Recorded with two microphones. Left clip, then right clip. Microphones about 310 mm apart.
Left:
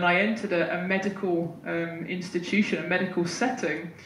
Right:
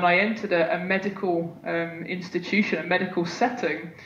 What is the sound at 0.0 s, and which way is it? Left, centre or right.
Speech, centre.